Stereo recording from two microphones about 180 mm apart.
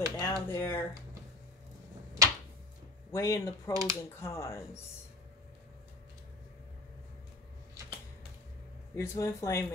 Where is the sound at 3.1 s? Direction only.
15° left (ahead or behind).